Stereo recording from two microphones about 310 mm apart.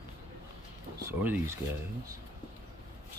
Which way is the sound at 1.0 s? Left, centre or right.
Centre.